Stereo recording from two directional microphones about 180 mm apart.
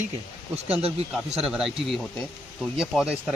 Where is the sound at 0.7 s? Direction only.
35° right (ahead or behind).